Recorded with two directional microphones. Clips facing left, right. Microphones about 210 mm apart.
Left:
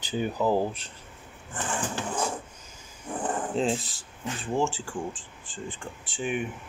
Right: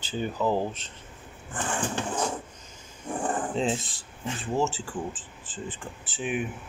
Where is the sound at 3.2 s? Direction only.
Centre (ahead or behind).